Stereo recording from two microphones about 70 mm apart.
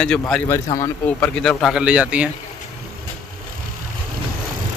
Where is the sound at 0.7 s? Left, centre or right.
Left.